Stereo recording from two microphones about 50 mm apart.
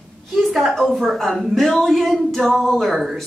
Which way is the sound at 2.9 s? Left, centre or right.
Centre.